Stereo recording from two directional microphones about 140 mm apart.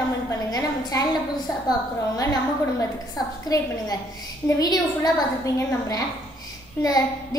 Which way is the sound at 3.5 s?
30° left (ahead or behind).